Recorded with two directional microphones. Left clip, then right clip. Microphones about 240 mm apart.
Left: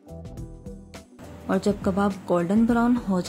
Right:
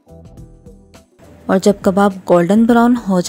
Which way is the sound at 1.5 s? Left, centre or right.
Right.